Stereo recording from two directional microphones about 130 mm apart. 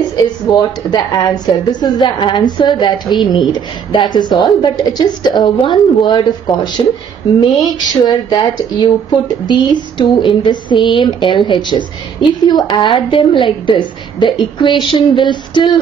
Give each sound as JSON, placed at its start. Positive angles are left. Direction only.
{"t": 0.1, "sound": "speech", "side_deg": 30}